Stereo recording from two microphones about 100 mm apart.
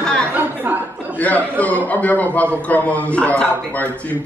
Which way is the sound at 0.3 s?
20° right (ahead or behind).